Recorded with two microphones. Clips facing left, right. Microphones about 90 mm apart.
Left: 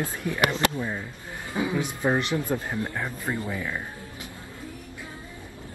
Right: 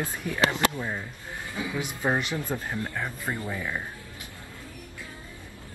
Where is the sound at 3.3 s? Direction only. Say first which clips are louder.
Left 3 dB; 10° right (ahead or behind).